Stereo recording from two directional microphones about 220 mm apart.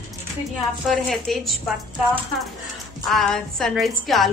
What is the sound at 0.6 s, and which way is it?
A woman's voice, centre (ahead or behind).